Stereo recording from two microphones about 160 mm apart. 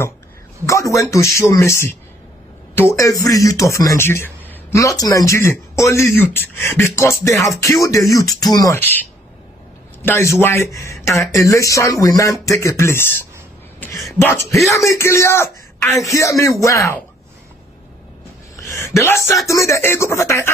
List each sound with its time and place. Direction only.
0.7 s a man's voice: 20° left (ahead or behind)
10.0 s a man's voice: 15° left (ahead or behind)
13.7 s a sound: 20° left (ahead or behind)
14.1 s a man's voice: 15° left (ahead or behind)
18.6 s speech: 20° left (ahead or behind)